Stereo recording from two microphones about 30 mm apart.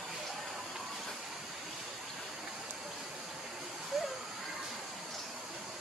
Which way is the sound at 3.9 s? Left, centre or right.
Centre.